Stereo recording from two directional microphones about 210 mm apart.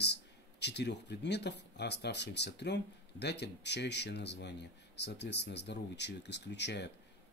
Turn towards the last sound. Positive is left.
turn(degrees=55)  # may be behind; listen again after turning